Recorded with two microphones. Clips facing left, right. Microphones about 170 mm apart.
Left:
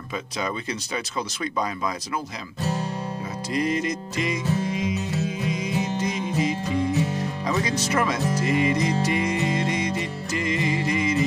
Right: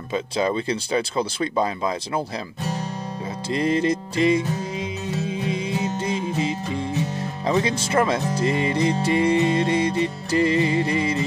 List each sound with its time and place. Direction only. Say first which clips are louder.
0.1 s speech: right 7 dB; 30° right (ahead or behind)
3.4 s music: right 4 dB; 30° right (ahead or behind)
7.4 s speech: right 5 dB; 25° right (ahead or behind)